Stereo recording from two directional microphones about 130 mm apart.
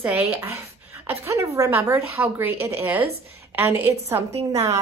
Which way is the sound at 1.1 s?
20° right (ahead or behind).